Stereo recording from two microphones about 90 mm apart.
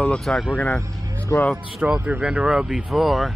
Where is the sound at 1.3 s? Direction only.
35° left (ahead or behind).